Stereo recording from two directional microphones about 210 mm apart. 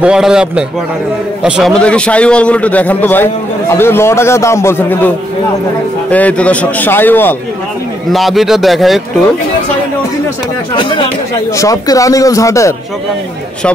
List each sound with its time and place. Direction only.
0.0 s a man's voice: 5° right (ahead or behind)
10.7 s a man's voice: 20° left (ahead or behind)